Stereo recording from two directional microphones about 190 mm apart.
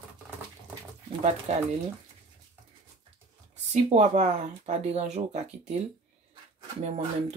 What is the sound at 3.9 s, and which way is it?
Speech, 35° right (ahead or behind).